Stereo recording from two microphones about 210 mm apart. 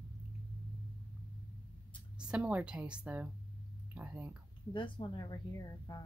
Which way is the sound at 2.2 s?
5° right (ahead or behind).